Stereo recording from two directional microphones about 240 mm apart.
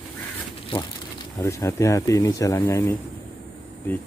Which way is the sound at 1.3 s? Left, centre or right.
Centre.